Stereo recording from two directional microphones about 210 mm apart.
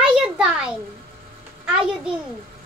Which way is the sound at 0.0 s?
5° right (ahead or behind).